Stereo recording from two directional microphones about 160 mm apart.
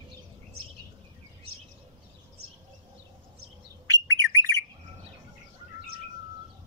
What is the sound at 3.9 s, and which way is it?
Bird, 25° right (ahead or behind).